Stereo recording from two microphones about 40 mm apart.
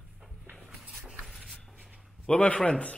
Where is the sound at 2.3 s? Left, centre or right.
Left.